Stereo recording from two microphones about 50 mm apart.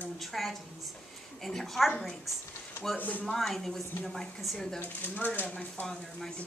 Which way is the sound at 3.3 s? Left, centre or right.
Centre.